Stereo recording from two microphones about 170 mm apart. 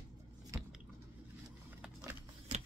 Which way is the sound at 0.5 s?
20° right (ahead or behind).